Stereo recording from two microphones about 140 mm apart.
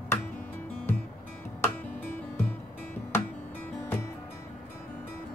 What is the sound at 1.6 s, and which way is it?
Music, 15° left (ahead or behind).